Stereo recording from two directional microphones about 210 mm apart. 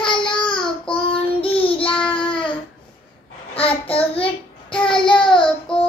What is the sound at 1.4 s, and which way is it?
Child singing, 25° left (ahead or behind).